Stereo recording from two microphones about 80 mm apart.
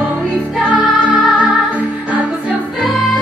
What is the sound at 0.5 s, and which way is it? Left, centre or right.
Music, centre.